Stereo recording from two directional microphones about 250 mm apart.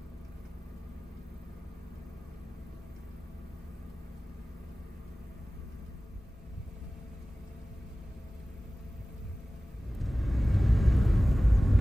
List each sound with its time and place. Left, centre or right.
9.9 s vehicle: centre